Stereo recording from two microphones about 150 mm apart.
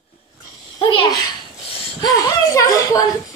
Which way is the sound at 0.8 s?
30° left (ahead or behind).